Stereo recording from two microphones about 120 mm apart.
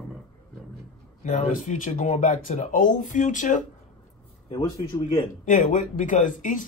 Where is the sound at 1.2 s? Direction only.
80° left.